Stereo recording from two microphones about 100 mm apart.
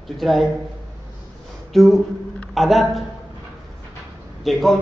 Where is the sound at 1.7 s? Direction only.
Centre (ahead or behind).